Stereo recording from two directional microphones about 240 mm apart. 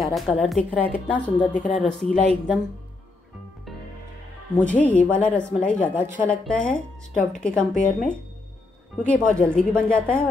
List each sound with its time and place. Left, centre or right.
0.0 s a woman's voice: centre
1.5 s speech: left
1.8 s a woman's voice: centre
4.6 s a woman's voice: centre